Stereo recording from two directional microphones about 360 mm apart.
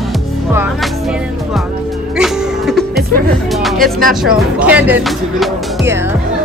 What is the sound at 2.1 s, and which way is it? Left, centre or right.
Music, centre.